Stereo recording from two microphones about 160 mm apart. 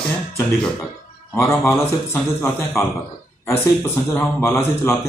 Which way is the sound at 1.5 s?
15° left (ahead or behind).